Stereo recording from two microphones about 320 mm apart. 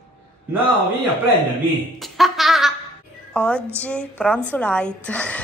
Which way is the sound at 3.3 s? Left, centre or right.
Centre.